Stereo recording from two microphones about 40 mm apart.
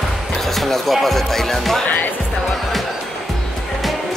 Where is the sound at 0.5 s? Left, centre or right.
Centre.